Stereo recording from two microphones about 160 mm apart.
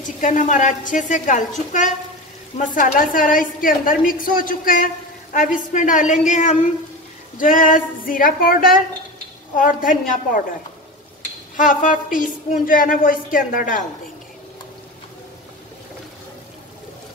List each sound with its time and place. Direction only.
0.2 s a woman's voice: 50° left (ahead or behind)
2.5 s a woman's voice: 50° left (ahead or behind)
11.5 s a woman's voice: 55° left (ahead or behind)